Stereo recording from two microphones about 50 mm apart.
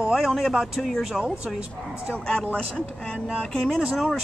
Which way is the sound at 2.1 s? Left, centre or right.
Left.